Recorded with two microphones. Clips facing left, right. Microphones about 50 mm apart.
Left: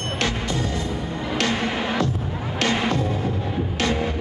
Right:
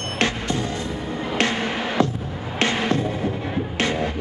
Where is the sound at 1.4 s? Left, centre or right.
Right.